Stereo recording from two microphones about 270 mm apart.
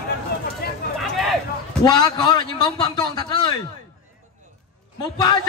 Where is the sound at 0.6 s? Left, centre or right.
Left.